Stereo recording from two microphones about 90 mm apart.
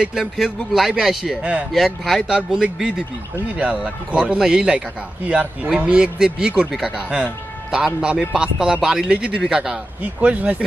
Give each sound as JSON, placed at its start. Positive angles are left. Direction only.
{"t": 0.0, "sound": "a man's voice", "side_deg": -5}